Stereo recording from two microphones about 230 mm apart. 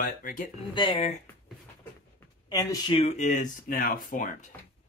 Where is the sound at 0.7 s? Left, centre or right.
Left.